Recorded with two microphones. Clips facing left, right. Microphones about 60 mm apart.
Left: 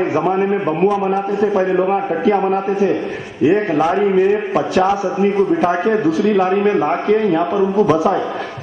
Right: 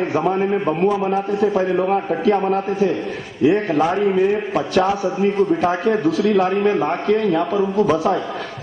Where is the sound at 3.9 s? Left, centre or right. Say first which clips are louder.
Left 3 dB; centre.